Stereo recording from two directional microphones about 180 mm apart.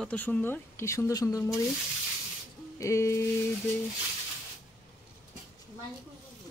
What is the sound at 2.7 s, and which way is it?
Music, 15° left (ahead or behind).